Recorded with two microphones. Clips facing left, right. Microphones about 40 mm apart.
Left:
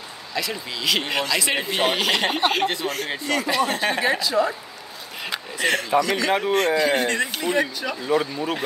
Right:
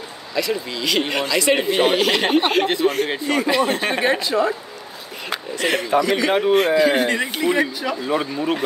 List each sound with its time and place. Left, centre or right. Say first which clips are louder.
0.3 s speech: right 5 dB; centre
2.6 s speech: right 5 dB; centre
5.7 s speech: right 2 dB; centre
8.1 s speech: even; right